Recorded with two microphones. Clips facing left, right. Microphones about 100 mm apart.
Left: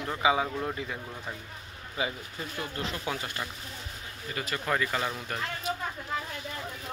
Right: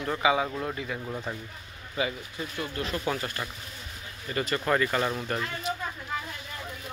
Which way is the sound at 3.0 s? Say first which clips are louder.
Right 3 dB; 15° left (ahead or behind).